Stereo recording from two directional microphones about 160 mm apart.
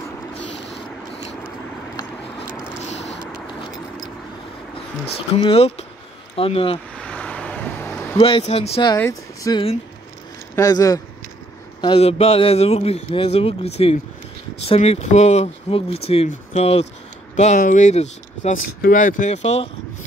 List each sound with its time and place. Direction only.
2.9 s vehicle: 40° left (ahead or behind)
5.3 s a man's voice: 35° left (ahead or behind)
7.0 s vehicle: 5° left (ahead or behind)
8.2 s a man's voice: 35° left (ahead or behind)
8.9 s speech: 20° left (ahead or behind)
11.8 s a man's voice: 35° left (ahead or behind)
17.4 s speech: 50° left (ahead or behind)
18.8 s speech: 55° left (ahead or behind)